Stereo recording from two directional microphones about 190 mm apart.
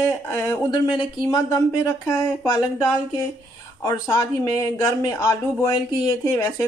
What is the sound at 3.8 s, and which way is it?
Speech, 20° left (ahead or behind).